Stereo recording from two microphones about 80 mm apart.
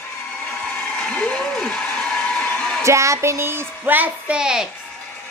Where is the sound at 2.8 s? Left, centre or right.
Right; by 4.7 s centre.